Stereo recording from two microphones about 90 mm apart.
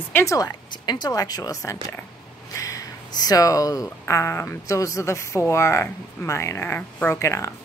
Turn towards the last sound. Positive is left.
turn(degrees=35)  # may be behind; listen again after turning